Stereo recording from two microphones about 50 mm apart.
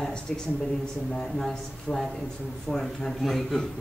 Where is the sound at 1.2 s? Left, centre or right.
Centre.